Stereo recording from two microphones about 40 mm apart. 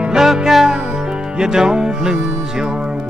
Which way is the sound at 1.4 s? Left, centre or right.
Centre.